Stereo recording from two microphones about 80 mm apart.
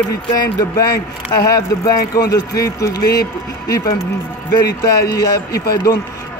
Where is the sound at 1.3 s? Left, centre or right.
Left.